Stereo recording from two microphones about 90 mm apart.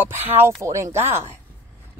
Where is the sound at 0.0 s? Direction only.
20° right (ahead or behind).